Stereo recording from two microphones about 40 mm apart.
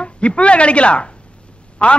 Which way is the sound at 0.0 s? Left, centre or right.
Left.